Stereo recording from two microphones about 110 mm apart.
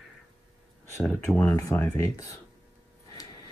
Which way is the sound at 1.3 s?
25° left (ahead or behind).